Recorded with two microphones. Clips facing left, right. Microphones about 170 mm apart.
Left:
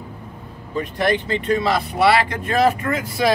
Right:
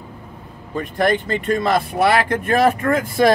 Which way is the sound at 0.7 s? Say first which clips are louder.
Right 2 dB; 50° right (ahead or behind).